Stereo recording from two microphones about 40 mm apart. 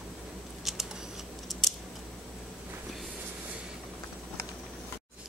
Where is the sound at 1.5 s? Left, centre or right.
Centre.